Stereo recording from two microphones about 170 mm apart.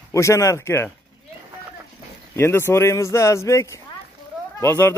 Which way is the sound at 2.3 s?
15° left (ahead or behind).